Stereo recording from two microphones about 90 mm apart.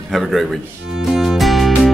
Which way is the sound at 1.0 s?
5° right (ahead or behind).